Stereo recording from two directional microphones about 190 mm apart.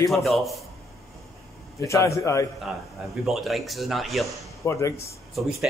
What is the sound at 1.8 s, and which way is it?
Speech, 15° left (ahead or behind).